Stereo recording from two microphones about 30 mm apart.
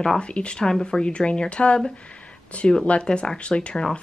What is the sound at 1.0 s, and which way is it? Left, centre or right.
Speech, left.